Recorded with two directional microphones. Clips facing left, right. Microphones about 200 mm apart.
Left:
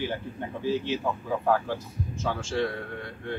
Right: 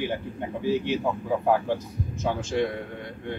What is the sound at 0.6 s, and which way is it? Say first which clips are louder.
Speech: right 2 dB; 15° right (ahead or behind).